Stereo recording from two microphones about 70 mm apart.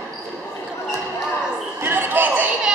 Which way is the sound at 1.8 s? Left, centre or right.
Right.